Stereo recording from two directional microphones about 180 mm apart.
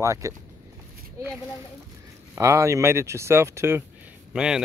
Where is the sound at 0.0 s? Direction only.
15° right (ahead or behind).